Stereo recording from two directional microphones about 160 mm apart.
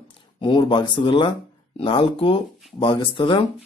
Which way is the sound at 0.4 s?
30° left (ahead or behind).